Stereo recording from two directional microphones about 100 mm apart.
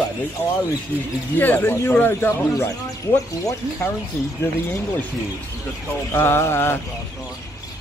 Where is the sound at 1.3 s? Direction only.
20° left (ahead or behind).